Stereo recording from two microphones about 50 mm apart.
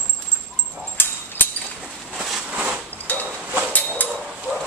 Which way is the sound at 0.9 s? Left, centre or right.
Left.